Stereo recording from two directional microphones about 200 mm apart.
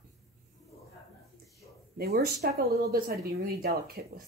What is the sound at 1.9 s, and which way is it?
Speech, 50° right (ahead or behind).